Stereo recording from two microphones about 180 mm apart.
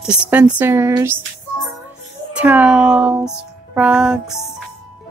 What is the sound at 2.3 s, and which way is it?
Speech, 10° right (ahead or behind).